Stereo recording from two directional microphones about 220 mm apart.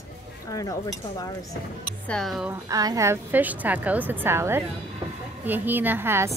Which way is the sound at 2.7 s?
15° right (ahead or behind).